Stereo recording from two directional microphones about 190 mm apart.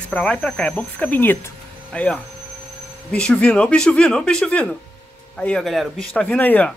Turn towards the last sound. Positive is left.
turn(degrees=10)  # may be behind; listen again after turning